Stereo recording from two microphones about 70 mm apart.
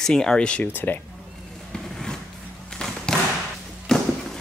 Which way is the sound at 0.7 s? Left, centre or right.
Left.